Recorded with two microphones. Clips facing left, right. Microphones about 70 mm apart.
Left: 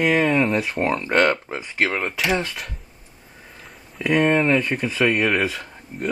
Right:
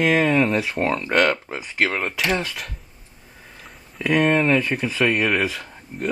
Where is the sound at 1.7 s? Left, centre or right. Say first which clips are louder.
Even; centre.